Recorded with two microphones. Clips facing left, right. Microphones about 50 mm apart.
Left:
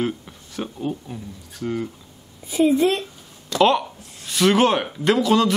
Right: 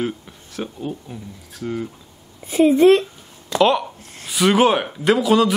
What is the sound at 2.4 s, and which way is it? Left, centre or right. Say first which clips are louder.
Speech: right 5 dB; right.